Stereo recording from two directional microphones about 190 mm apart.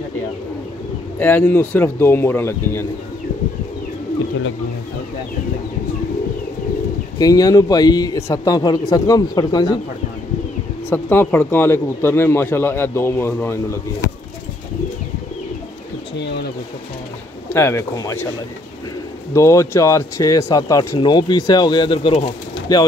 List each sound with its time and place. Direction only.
1.2 s speech: 10° left (ahead or behind)
7.2 s speech: 20° left (ahead or behind)
10.9 s speech: 10° left (ahead or behind)
16.2 s speech: 60° left (ahead or behind)
17.5 s speech: 15° left (ahead or behind)
19.3 s speech: 15° left (ahead or behind)